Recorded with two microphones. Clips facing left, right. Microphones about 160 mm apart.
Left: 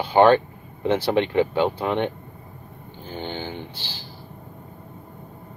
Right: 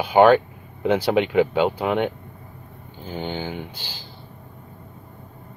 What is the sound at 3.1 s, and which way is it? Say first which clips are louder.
Speech: right 2 dB; 10° right (ahead or behind).